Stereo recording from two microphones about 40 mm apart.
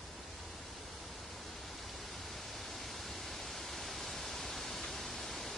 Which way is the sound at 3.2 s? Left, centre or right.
Centre.